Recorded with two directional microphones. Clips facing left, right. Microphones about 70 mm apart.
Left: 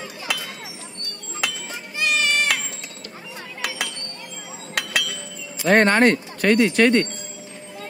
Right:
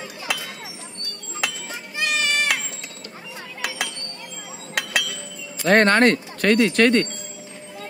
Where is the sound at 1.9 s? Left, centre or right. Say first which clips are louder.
Left 2 dB; centre.